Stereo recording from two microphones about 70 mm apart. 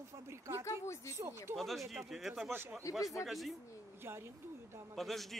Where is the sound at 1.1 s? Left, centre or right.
Right.